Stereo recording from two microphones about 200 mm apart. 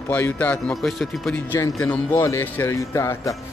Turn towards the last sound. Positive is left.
turn(degrees=15)  # may be behind; listen again after turning